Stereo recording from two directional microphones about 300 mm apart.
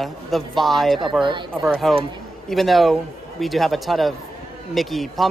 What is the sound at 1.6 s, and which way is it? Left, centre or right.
Speech, centre.